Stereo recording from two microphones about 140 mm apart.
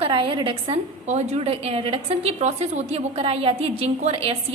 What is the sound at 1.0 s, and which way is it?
A woman's voice, 50° right (ahead or behind).